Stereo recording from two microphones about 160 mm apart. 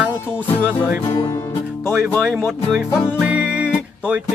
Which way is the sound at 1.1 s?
25° left (ahead or behind).